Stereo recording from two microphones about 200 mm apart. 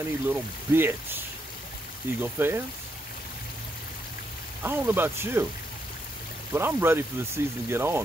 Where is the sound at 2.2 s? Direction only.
10° right (ahead or behind).